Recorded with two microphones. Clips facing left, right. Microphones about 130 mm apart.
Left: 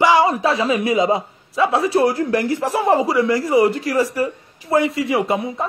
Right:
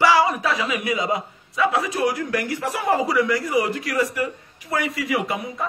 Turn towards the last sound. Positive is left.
turn(degrees=25)  # may be behind; listen again after turning